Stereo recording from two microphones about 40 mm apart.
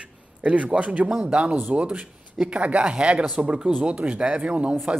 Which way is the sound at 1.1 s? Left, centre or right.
Right.